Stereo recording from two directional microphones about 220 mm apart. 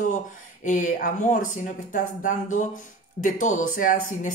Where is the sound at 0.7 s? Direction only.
35° left (ahead or behind).